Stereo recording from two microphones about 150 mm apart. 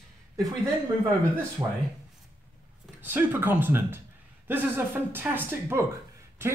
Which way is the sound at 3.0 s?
15° right (ahead or behind).